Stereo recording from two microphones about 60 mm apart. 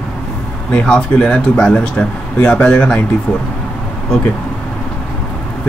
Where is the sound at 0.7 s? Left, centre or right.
Centre.